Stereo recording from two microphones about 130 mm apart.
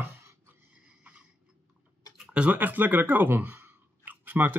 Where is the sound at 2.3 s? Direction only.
10° right (ahead or behind).